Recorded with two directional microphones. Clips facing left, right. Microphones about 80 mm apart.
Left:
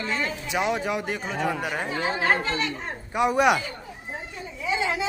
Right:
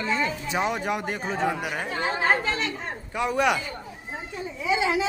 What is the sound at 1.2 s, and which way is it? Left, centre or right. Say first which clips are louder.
Speech: right 1 dB; right.